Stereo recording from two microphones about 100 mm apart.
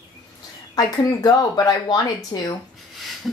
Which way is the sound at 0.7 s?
40° left (ahead or behind).